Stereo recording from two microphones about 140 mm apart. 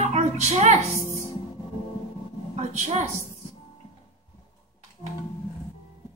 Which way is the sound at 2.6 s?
55° right (ahead or behind).